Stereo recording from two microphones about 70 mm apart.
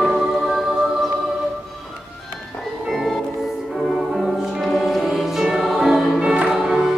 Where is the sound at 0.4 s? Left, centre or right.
Centre.